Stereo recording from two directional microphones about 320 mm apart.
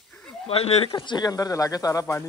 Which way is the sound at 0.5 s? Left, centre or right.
Centre.